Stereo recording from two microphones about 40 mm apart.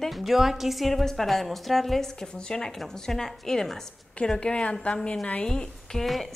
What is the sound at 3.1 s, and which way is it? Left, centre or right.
Speech, centre.